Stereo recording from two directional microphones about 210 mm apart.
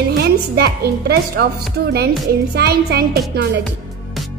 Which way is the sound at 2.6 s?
50° right (ahead or behind).